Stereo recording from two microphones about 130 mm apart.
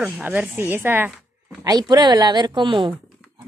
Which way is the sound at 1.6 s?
30° right (ahead or behind).